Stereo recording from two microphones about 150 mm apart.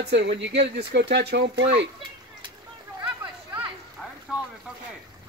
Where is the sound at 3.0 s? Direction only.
10° right (ahead or behind).